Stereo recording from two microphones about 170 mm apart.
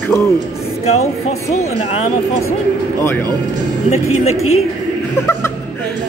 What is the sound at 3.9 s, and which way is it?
Speech, 40° left (ahead or behind).